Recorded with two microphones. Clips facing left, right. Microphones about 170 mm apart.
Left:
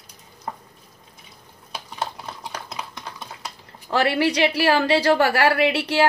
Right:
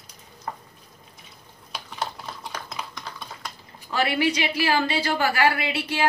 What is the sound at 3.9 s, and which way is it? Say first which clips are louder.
A woman's voice: left 3 dB; 70° left (ahead or behind).